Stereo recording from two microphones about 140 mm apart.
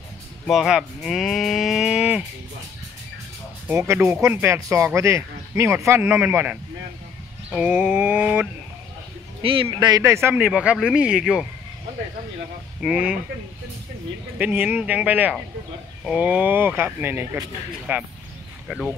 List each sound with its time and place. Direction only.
0.5 s speech: 5° right (ahead or behind)
3.6 s speech: 15° right (ahead or behind)
9.4 s speech: 40° right (ahead or behind)
9.7 s speech: 30° right (ahead or behind)
10.0 s speech: 15° right (ahead or behind)
12.8 s speech: 5° right (ahead or behind)
14.4 s speech: 10° right (ahead or behind)